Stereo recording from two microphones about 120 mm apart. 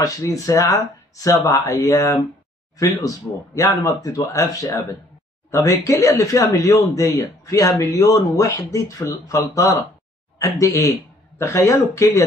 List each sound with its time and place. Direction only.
0.0 s speech: 30° left (ahead or behind)
3.5 s speech: 25° left (ahead or behind)
10.4 s speech: 25° left (ahead or behind)